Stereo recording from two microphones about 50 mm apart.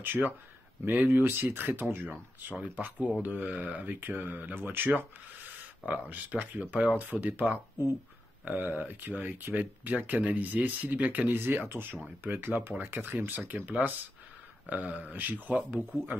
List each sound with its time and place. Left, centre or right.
0.0 s speech: right